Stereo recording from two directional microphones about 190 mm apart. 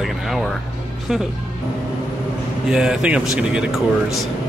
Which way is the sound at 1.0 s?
Centre (ahead or behind).